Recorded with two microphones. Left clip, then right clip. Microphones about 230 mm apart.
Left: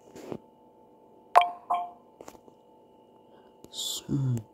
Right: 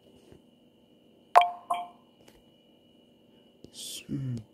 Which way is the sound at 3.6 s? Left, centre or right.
Centre.